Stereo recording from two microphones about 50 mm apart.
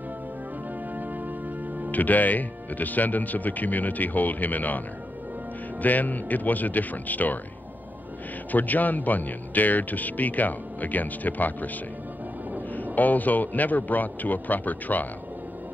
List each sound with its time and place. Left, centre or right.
1.9 s speech: left
8.5 s speech: left
12.7 s speech: left